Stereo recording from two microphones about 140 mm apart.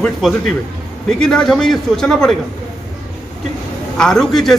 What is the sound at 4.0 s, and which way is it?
Speech, 5° left (ahead or behind).